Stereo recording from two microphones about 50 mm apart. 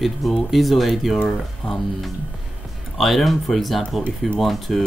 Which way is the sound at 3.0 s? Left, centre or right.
Centre.